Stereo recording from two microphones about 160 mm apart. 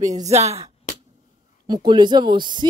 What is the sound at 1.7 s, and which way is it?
Speech, 30° right (ahead or behind).